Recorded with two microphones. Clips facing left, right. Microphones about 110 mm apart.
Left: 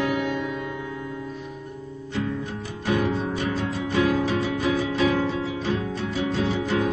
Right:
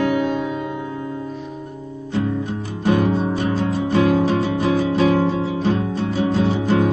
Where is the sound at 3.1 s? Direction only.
30° right (ahead or behind).